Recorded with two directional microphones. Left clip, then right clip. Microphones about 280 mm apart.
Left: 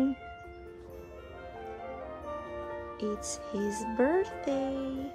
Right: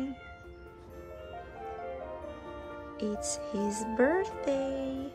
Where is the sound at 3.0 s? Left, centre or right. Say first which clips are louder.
Right 2 dB; centre.